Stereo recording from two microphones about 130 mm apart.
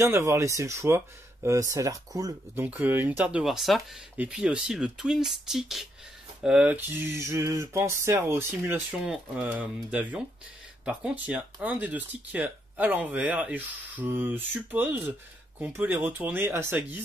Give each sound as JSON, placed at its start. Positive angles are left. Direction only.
{"t": 0.0, "sound": "speech", "side_deg": -25}
{"t": 2.6, "sound": "speech", "side_deg": -15}